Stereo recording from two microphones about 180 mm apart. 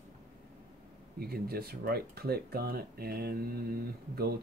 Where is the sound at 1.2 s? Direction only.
60° right (ahead or behind).